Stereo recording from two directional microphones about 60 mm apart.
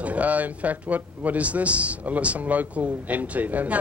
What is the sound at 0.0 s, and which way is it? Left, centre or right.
Speech, right.